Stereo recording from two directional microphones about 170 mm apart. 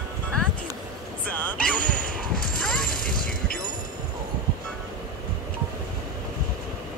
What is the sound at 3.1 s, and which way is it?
Mechanisms, 55° left (ahead or behind).